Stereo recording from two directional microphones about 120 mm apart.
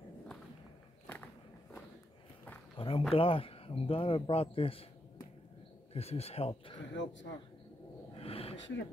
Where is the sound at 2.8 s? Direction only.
45° left (ahead or behind).